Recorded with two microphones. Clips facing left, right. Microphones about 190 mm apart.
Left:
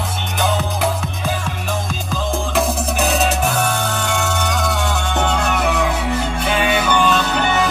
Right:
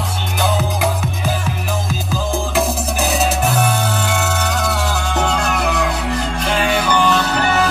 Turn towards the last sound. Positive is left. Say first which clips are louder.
# right 1 dB
turn(degrees=0)  # may be behind; listen again after turning